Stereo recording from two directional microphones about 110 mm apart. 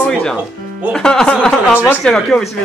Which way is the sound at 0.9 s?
5° left (ahead or behind).